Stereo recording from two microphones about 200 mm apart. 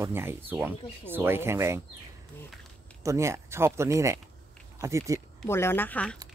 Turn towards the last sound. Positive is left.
turn(degrees=5)  # may be behind; listen again after turning